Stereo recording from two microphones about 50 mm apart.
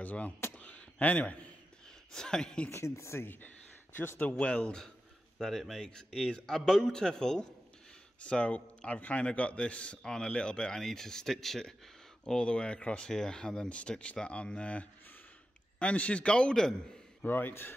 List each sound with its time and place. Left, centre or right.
0.0 s speech: left
0.6 s a sound: left
2.1 s speech: centre
2.7 s a woman's voice: left
3.3 s a sound: left
4.4 s a man's voice: centre
5.4 s a man's voice: centre
12.3 s a man's voice: centre
17.2 s speech: left